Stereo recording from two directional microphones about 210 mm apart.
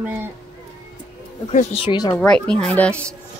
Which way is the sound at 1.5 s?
30° left (ahead or behind).